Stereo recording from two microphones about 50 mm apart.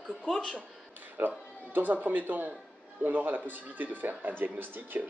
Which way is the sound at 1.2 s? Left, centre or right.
Right.